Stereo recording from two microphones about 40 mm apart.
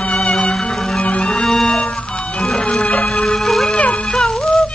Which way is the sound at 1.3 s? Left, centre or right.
Centre.